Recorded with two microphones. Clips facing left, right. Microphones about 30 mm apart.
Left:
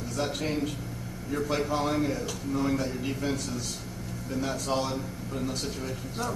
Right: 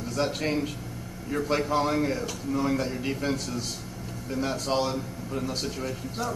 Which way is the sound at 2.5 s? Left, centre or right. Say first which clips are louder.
Right 2 dB; right.